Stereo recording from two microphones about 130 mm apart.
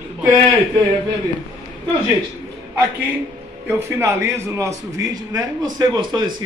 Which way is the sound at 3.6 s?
20° right (ahead or behind).